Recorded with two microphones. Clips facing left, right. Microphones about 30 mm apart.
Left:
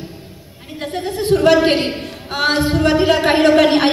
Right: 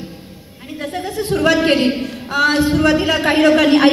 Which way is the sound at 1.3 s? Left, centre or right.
Left.